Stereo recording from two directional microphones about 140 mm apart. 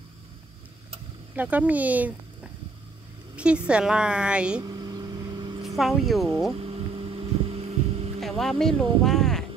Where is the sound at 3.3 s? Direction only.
10° right (ahead or behind).